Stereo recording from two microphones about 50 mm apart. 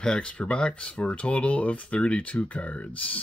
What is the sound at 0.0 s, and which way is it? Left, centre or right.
Speech, centre.